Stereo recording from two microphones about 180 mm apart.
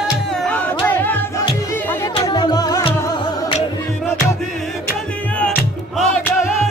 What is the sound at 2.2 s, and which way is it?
Music, 20° left (ahead or behind).